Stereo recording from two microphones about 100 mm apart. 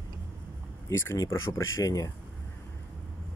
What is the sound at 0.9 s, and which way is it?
Speech, 25° left (ahead or behind).